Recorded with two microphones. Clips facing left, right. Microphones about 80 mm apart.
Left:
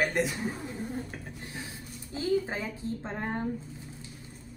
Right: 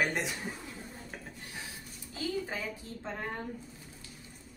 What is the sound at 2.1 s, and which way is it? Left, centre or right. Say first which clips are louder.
Speech: left 7 dB; left.